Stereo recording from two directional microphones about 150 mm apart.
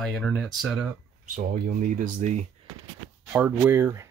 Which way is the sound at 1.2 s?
60° right (ahead or behind).